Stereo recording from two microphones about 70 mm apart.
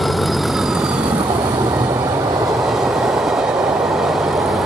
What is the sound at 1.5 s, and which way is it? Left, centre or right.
Vehicle, right.